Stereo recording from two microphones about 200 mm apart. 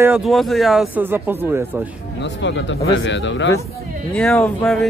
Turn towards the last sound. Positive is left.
turn(degrees=0)  # may be behind; listen again after turning